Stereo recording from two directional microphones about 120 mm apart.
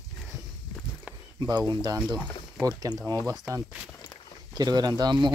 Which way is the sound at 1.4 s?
35° right (ahead or behind).